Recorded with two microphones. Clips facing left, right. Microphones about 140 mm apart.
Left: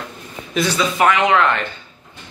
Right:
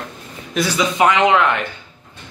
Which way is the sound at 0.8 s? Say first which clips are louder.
Right 2 dB; 20° right (ahead or behind).